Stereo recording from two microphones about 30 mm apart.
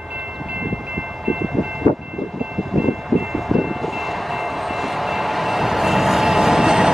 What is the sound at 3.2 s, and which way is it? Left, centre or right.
Vehicle, centre.